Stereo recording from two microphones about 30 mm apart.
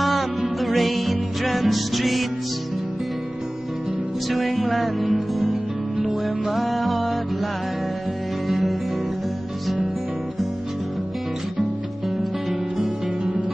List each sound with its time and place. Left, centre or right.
0.0 s music: centre
4.7 s music: centre
6.5 s music: centre
8.5 s music: centre
12.7 s music: right